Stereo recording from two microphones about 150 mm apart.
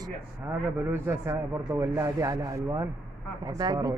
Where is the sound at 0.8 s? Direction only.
15° right (ahead or behind).